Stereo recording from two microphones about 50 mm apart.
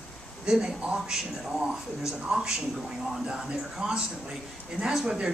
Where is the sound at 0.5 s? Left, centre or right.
Centre.